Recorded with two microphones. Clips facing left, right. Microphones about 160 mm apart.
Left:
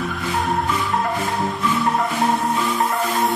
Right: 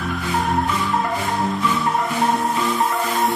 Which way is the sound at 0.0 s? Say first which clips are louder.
Right 1 dB; centre (ahead or behind).